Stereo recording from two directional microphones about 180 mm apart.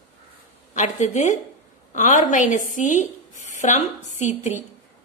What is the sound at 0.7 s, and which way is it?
A woman's voice, 40° left (ahead or behind).